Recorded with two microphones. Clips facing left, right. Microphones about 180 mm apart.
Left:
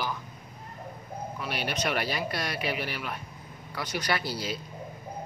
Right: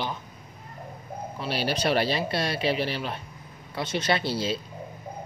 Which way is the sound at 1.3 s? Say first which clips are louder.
Right 5 dB; 30° right (ahead or behind).